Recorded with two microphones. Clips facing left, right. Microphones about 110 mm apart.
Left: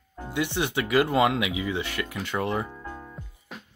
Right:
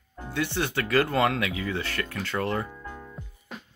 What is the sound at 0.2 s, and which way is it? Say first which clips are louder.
Speech: left 1 dB; 15° left (ahead or behind).